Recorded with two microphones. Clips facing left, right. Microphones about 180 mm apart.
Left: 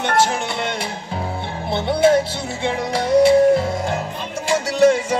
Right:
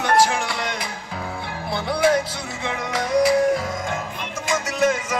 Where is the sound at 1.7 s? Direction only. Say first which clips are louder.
Left 4 dB; 25° left (ahead or behind).